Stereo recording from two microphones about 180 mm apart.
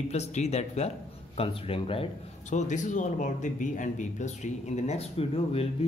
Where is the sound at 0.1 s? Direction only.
40° left (ahead or behind).